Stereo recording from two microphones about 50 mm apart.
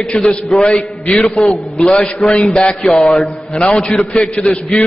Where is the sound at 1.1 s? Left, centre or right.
Centre.